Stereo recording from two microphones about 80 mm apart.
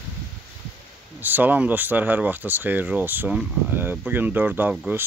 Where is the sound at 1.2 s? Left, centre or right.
Right.